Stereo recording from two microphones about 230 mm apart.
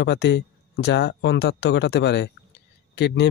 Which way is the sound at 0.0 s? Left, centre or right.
Left.